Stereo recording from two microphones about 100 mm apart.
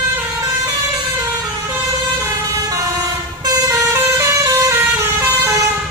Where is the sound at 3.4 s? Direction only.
35° right (ahead or behind).